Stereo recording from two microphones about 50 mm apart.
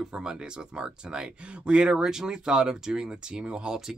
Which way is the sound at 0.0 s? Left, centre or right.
Centre.